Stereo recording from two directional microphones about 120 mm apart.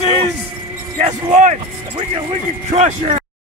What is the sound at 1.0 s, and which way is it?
Speech, 85° right.